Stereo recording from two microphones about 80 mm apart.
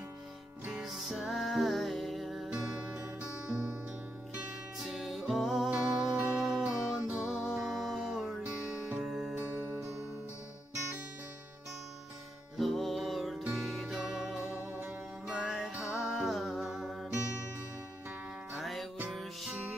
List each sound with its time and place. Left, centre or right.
0.7 s music: centre
2.5 s music: centre
4.7 s music: centre
9.3 s music: right
12.5 s music: centre
18.5 s music: centre